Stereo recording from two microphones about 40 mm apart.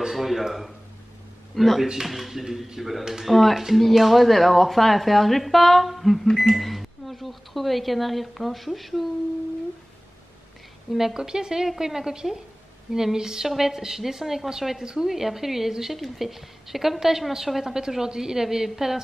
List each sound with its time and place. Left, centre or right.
0.0 s speech: centre
10.9 s a woman's voice: centre